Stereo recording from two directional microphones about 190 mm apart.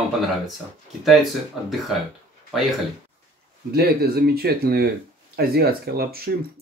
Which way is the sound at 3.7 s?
55° right (ahead or behind).